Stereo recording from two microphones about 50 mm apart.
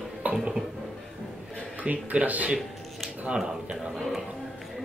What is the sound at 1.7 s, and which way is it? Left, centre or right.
Speech, right.